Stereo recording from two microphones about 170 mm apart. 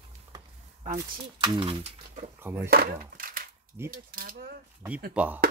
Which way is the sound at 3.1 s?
55° right (ahead or behind).